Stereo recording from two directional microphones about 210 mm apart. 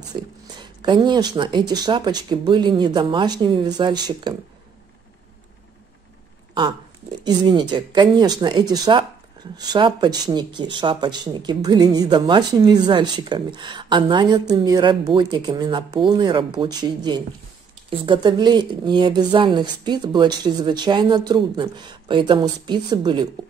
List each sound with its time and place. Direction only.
0.1 s speech: 20° right (ahead or behind)
7.2 s speech: 20° right (ahead or behind)